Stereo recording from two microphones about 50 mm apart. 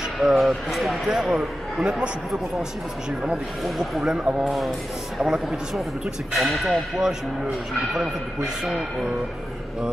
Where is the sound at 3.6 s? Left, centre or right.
Centre.